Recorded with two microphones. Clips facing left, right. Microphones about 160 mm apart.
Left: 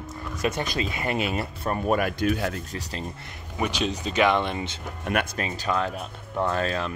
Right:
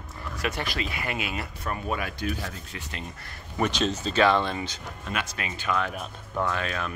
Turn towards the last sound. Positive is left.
turn(degrees=35)  # may be behind; listen again after turning